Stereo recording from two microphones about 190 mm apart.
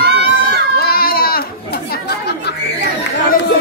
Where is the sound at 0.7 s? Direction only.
50° left (ahead or behind).